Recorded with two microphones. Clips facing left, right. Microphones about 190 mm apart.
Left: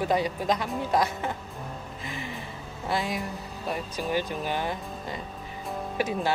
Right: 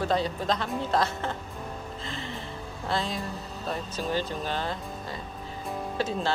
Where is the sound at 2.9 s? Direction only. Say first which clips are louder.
Left 1 dB; 15° left (ahead or behind).